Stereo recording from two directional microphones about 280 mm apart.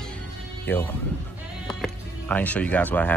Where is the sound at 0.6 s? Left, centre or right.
Centre.